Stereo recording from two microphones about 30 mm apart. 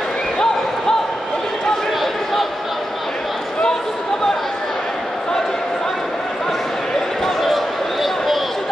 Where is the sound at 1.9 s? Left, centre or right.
Centre.